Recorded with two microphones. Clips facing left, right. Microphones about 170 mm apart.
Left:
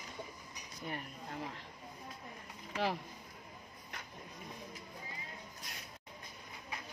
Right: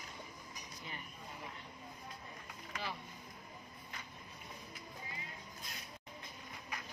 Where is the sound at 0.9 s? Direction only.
75° left (ahead or behind).